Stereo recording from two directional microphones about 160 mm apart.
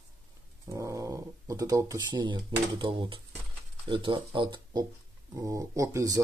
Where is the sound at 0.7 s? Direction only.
20° right (ahead or behind).